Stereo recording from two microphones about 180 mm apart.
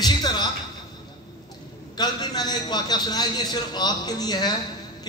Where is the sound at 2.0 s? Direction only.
20° left (ahead or behind).